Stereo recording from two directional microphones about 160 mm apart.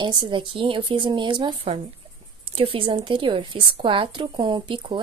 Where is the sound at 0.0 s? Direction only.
30° right (ahead or behind).